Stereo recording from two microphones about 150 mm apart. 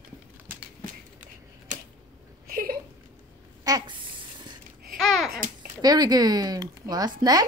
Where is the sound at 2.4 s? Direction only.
75° right (ahead or behind).